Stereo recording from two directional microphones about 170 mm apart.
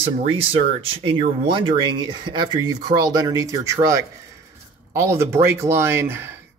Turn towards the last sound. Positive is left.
turn(degrees=-15)  # may be behind; listen again after turning